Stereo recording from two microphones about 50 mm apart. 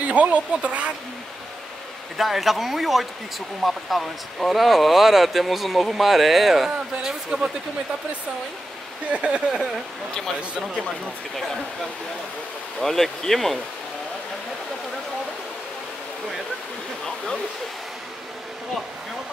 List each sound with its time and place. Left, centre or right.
0.0 s speech: right
2.1 s speech: centre
9.1 s speech: right
10.8 s speech: centre
12.8 s speech: centre